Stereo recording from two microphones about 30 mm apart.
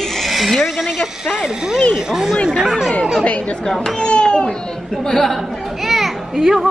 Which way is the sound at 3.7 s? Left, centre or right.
Left.